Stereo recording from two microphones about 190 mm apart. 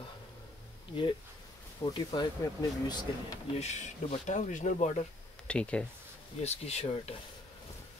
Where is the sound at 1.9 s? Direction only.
20° left (ahead or behind).